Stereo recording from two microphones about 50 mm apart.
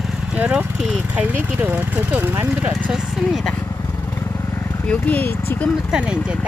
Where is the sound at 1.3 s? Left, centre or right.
Right.